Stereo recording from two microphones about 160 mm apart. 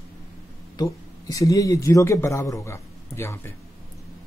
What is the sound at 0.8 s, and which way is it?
Speech, 20° left (ahead or behind).